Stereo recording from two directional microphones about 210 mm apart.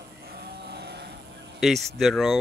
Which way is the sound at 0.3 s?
50° right (ahead or behind).